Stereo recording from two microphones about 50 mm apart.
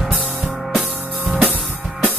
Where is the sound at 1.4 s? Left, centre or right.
Right.